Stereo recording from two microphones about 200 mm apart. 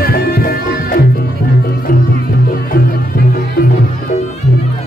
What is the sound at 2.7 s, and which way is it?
Music, 50° left (ahead or behind).